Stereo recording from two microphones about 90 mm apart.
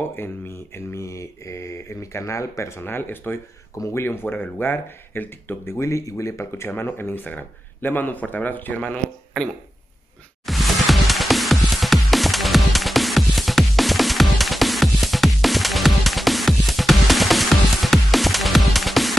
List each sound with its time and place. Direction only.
0.1 s mantra: 25° left (ahead or behind)
3.7 s speech: 35° left (ahead or behind); by 9.0 s 15° left (ahead or behind)
9.3 s speech: 5° left (ahead or behind)
10.4 s music: centre (ahead or behind)